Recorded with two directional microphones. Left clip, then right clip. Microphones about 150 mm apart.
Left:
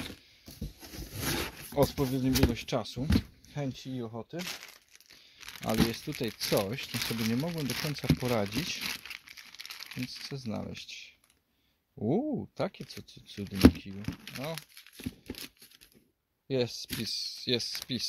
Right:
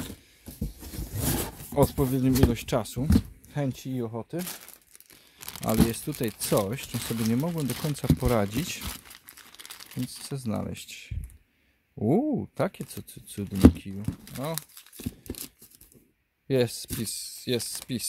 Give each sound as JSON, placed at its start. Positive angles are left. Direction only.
{"t": 1.7, "sound": "speech", "side_deg": -25}
{"t": 5.4, "sound": "tearing", "side_deg": -90}
{"t": 5.8, "sound": "speech", "side_deg": -20}
{"t": 9.0, "sound": "crumpling", "side_deg": -25}
{"t": 11.9, "sound": "speech", "side_deg": -20}
{"t": 16.4, "sound": "speech", "side_deg": -35}
{"t": 17.0, "sound": "speech", "side_deg": -15}